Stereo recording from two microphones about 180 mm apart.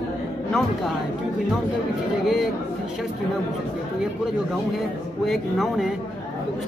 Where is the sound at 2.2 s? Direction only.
Centre (ahead or behind).